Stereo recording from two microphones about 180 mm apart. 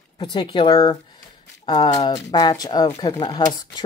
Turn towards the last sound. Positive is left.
turn(degrees=25)  # may be behind; listen again after turning